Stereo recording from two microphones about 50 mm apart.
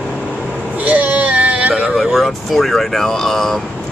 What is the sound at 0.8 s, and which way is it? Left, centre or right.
Baby cry, right.